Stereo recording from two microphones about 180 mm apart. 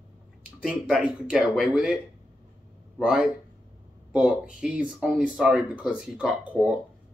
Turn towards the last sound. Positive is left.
turn(degrees=-5)  # may be behind; listen again after turning